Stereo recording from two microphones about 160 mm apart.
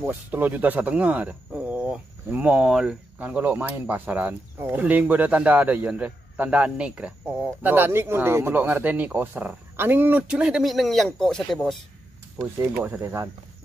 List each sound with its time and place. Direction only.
0.0 s speech: 10° right (ahead or behind)
12.4 s speech: 10° right (ahead or behind)